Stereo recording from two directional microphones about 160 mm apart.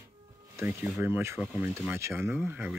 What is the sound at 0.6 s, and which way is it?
Speech, 10° right (ahead or behind).